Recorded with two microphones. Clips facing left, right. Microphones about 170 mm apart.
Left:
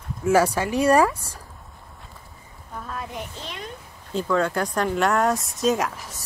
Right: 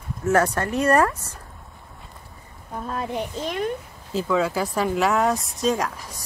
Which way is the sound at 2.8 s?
30° right (ahead or behind).